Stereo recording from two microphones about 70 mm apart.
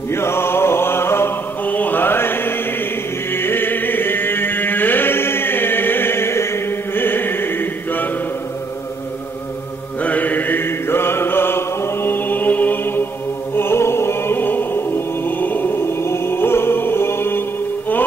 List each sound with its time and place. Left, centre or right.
0.1 s mantra: left
1.7 s mantra: left
3.3 s chant: left
10.0 s mantra: left
13.6 s music: left